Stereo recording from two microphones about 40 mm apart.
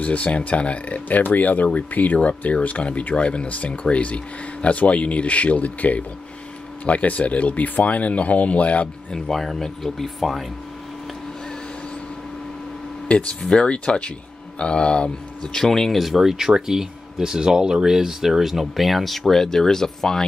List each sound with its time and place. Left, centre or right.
0.0 s speech: left
9.3 s speech: centre
13.1 s speech: left
13.4 s speech: centre
13.7 s speech: left
15.6 s speech: centre
16.0 s speech: centre